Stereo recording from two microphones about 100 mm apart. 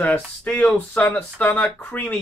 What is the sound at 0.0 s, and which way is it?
Speech, 15° left (ahead or behind).